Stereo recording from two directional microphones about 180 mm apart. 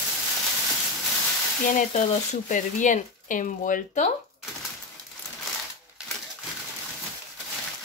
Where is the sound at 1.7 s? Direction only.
45° left (ahead or behind).